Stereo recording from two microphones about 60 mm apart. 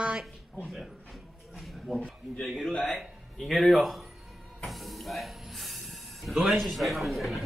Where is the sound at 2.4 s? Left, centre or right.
Centre.